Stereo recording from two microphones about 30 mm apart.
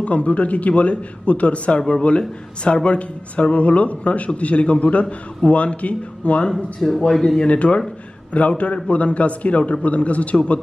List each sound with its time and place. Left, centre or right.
0.0 s speech: left
1.9 s speech: left
6.5 s speech: centre
7.4 s speech: left